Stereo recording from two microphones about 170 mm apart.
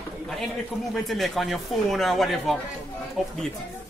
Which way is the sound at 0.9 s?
Centre (ahead or behind).